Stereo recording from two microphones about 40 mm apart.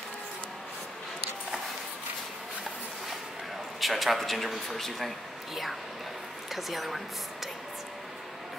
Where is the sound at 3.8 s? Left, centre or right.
Centre.